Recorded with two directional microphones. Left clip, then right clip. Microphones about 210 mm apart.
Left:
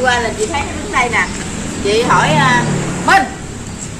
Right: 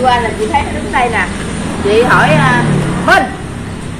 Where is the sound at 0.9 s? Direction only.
60° left (ahead or behind).